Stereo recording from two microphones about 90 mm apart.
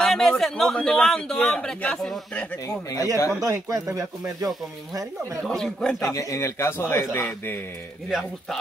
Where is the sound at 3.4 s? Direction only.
40° right (ahead or behind).